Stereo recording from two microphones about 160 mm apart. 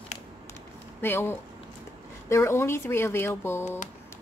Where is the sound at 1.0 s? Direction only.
15° left (ahead or behind).